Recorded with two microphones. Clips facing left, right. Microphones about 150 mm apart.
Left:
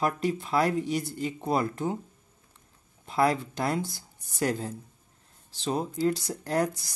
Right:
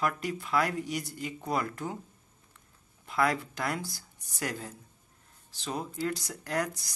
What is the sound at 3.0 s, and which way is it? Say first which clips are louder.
Speech: left 4 dB; 30° left (ahead or behind).